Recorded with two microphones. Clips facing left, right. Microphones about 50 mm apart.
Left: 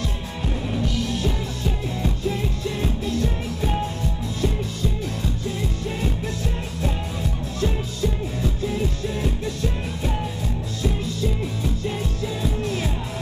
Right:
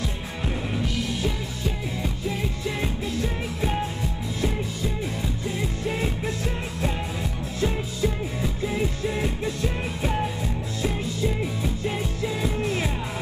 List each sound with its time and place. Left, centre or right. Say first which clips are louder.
2.8 s music: left 4 dB; centre
5.9 s music: right 2 dB; right